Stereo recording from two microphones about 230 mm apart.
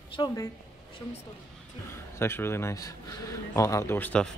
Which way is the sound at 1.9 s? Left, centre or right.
Centre.